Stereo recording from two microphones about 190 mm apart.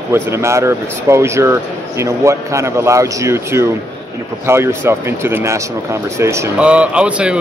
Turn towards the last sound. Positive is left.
turn(degrees=-5)  # may be behind; listen again after turning